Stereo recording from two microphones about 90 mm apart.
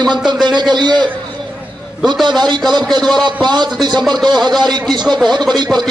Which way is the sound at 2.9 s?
55° right (ahead or behind).